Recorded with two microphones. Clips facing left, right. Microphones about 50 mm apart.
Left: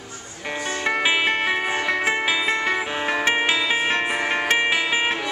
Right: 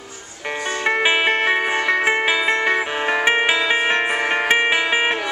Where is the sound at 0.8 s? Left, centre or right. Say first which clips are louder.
Right 3 dB; centre.